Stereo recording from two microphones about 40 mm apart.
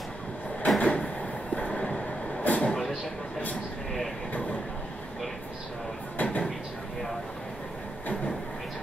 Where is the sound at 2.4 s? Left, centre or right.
Left.